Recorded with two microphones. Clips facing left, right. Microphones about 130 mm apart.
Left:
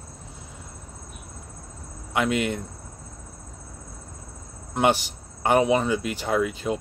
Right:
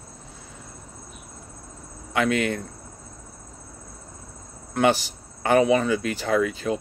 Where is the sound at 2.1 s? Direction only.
15° left (ahead or behind).